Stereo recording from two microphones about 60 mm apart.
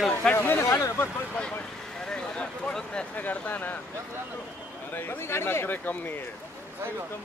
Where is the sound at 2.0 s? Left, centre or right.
Centre.